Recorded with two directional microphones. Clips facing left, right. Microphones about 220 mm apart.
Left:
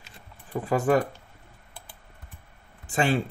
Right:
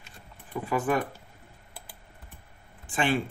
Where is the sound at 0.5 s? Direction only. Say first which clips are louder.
Left 4 dB; 40° left (ahead or behind).